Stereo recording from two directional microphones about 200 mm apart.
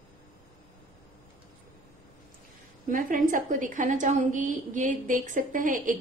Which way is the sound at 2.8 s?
45° right (ahead or behind).